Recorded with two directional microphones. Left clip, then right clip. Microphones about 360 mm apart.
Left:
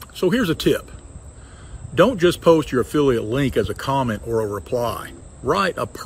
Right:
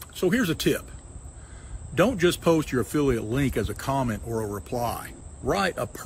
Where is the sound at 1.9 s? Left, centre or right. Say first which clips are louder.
Left 6 dB; centre.